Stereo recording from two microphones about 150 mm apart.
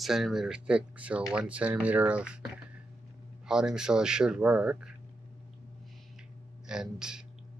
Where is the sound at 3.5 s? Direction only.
5° right (ahead or behind).